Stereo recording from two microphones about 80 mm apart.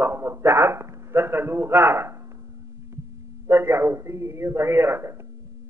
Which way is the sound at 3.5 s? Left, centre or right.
Right.